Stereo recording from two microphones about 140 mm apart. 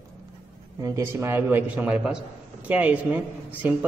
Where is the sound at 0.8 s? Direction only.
20° right (ahead or behind).